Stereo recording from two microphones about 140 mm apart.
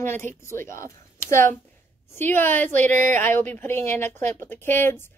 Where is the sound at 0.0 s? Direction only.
15° left (ahead or behind).